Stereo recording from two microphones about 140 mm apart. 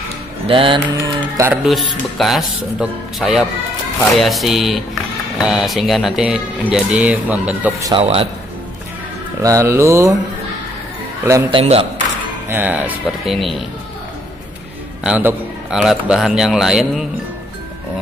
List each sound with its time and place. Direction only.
0.5 s a man's voice: 40° right (ahead or behind)
0.9 s music: 25° right (ahead or behind)
1.5 s speech: centre (ahead or behind)
7.9 s a man's voice: 40° right (ahead or behind)
9.4 s speech: 20° right (ahead or behind)
11.5 s speech: 45° right (ahead or behind)
12.4 s speech: 15° right (ahead or behind)
13.2 s speech: centre (ahead or behind)
15.0 s speech: 10° right (ahead or behind)